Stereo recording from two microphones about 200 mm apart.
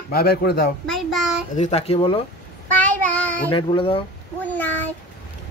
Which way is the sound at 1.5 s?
35° left (ahead or behind).